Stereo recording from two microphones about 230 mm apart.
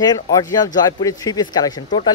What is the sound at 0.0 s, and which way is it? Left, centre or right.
Speech, centre.